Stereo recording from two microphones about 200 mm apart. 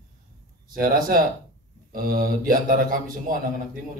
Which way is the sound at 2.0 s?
45° right (ahead or behind).